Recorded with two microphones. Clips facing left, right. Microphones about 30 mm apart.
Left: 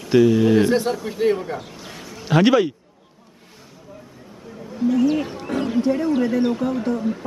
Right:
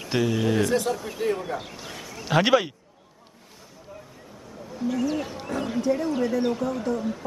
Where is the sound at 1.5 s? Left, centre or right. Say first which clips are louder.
Left 1 dB; centre.